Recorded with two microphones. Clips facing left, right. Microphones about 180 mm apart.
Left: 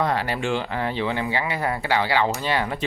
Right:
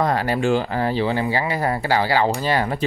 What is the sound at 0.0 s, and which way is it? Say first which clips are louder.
Speech: right 4 dB; 45° right (ahead or behind).